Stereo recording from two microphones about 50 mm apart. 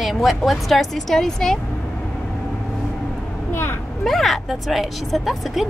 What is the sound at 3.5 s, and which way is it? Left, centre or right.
Vehicle, left.